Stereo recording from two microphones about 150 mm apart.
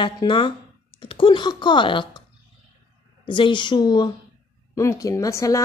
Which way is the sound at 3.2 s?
35° left (ahead or behind).